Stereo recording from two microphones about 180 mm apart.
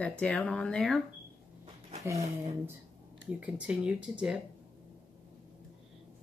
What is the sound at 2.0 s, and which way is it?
Speech, 15° right (ahead or behind).